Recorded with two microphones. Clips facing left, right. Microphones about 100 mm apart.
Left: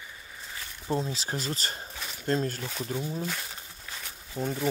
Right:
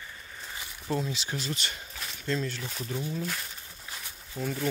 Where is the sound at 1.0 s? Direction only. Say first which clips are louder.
Left 1 dB; 35° left (ahead or behind).